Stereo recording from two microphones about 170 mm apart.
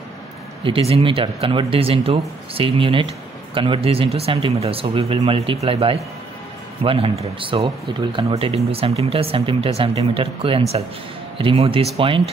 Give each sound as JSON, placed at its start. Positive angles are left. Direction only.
{"t": 0.7, "sound": "speech", "side_deg": -35}